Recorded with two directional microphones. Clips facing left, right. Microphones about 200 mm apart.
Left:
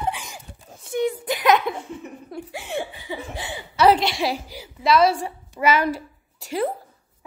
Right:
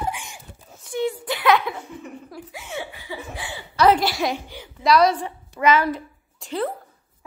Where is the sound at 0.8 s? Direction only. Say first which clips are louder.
Left 2 dB; 15° left (ahead or behind).